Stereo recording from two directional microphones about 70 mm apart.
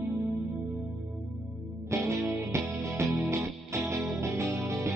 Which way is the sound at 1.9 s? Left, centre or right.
Right.